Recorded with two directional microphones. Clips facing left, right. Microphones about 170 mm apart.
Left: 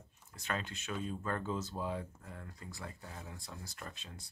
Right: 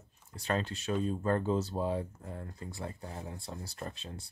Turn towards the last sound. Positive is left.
turn(degrees=-30)  # may be behind; listen again after turning